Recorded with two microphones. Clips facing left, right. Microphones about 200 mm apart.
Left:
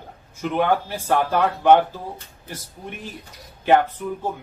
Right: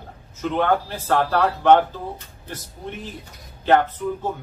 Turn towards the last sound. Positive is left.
turn(degrees=10)  # may be behind; listen again after turning